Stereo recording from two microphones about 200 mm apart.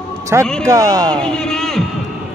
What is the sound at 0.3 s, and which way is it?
Speech, 15° right (ahead or behind).